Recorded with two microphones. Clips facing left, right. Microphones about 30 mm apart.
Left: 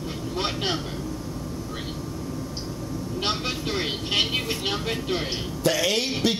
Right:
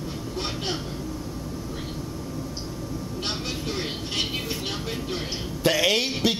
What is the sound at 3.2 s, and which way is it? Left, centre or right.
Vehicle, centre.